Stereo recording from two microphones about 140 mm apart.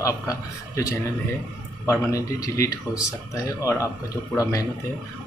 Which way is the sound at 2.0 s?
25° left (ahead or behind).